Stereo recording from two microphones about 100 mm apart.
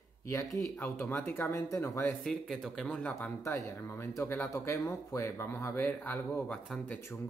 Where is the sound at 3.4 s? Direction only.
30° left (ahead or behind).